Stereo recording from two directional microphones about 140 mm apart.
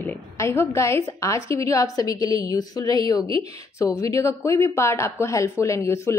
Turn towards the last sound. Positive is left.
turn(degrees=20)  # may be behind; listen again after turning